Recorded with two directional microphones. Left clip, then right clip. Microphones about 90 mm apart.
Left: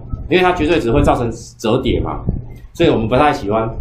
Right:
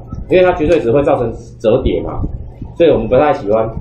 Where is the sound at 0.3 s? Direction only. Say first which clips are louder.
Right 3 dB; 20° left (ahead or behind).